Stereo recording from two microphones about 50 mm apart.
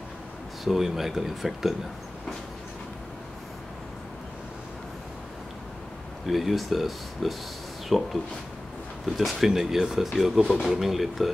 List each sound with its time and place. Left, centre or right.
0.7 s speech: centre
6.2 s speech: centre